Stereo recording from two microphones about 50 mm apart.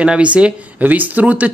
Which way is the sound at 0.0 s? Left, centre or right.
Right.